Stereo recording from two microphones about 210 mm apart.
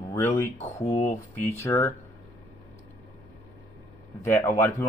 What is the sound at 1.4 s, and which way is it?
Speech, 15° left (ahead or behind).